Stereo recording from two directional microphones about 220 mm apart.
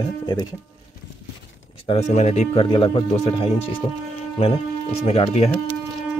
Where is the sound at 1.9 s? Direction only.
30° left (ahead or behind).